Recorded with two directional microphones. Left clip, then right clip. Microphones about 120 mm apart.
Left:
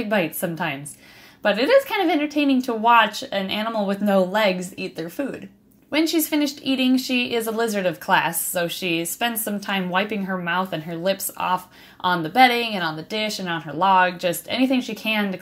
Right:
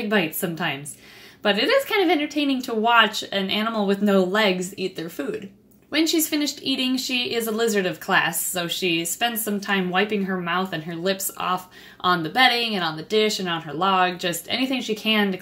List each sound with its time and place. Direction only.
0.1 s speech: 15° left (ahead or behind)